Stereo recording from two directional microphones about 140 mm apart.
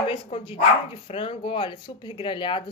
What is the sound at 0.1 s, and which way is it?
Speech, 40° left (ahead or behind).